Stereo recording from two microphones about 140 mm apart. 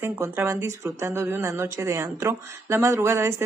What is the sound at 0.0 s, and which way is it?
Speech, 15° right (ahead or behind).